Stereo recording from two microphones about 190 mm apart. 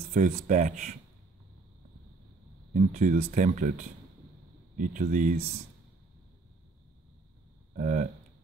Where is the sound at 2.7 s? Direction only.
45° right (ahead or behind).